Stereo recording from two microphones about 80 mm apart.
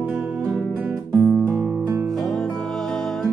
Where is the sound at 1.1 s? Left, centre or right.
Right.